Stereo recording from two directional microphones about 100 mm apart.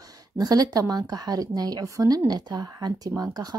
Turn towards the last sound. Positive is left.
turn(degrees=-40)  # may be behind; listen again after turning